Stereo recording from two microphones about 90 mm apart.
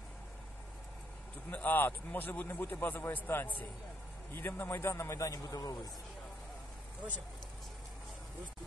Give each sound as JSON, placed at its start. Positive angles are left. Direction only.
{"t": 1.5, "sound": "a man's voice", "side_deg": 20}